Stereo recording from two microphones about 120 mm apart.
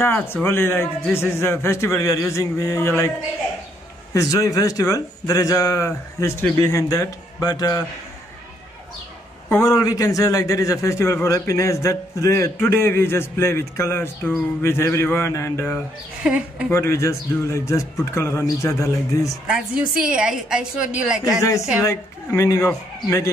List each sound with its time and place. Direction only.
0.0 s a man's voice: 20° left (ahead or behind)
4.1 s a man's voice: 25° left (ahead or behind)
9.5 s a man's voice: 25° left (ahead or behind)
16.2 s a woman's voice: 10° right (ahead or behind)
16.7 s a man's voice: 25° left (ahead or behind)
19.4 s a woman's voice: 10° right (ahead or behind)
21.4 s a man's voice: 25° left (ahead or behind)